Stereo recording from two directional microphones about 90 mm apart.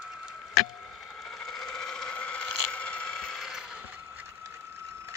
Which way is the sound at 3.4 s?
5° right (ahead or behind).